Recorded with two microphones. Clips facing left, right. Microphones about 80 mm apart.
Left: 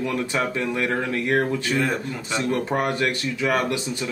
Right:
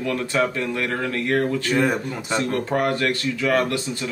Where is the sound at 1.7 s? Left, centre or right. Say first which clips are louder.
Right 3 dB; centre.